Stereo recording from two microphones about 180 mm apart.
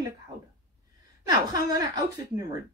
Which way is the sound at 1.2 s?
20° right (ahead or behind).